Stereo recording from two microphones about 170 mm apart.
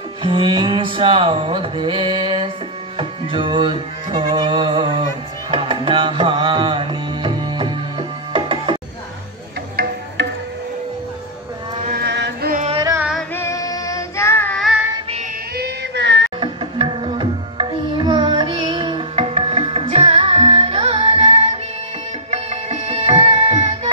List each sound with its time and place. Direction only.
0.2 s music: 30° right (ahead or behind)
10.2 s music: 90° right
12.0 s music: 85° right
12.7 s music: 20° right (ahead or behind)
13.3 s music: 15° left (ahead or behind)
15.5 s child singing: 80° right
16.3 s tabla: 30° right (ahead or behind)
22.3 s music: 40° right (ahead or behind)